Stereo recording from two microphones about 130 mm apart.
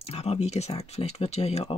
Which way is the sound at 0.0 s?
50° left (ahead or behind).